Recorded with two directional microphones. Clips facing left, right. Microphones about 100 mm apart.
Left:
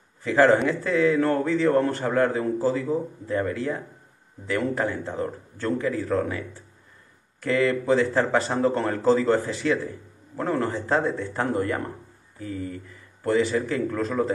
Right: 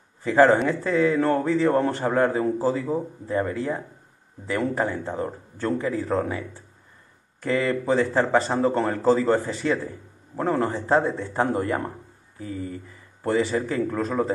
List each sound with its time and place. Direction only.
0.2 s speech: 5° right (ahead or behind)
7.4 s a man's voice: 5° right (ahead or behind)
9.8 s a man's voice: 15° right (ahead or behind)
12.4 s speech: 15° right (ahead or behind)
13.4 s speech: 5° right (ahead or behind)